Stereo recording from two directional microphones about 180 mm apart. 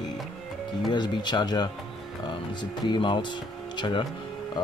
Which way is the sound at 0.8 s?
25° left (ahead or behind).